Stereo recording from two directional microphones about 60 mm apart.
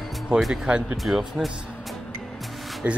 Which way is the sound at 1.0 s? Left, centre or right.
Centre.